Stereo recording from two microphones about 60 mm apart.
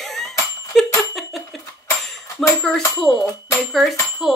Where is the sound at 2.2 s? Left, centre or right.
Left.